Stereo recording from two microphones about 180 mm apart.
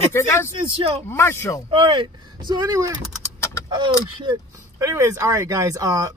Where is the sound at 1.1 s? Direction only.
15° left (ahead or behind).